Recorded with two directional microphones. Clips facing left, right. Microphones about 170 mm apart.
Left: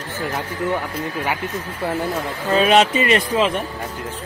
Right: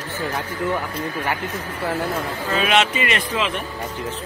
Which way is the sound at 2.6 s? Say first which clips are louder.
Left 5 dB; 40° left (ahead or behind).